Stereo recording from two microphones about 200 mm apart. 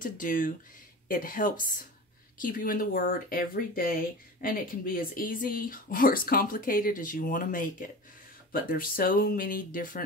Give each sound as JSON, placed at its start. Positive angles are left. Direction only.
{"t": 0.0, "sound": "speech", "side_deg": 40}